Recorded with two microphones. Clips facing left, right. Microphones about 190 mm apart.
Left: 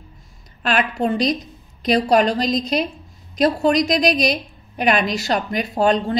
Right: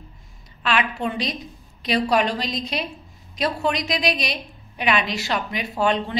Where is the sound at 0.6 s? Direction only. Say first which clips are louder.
Left 4 dB; 45° left (ahead or behind).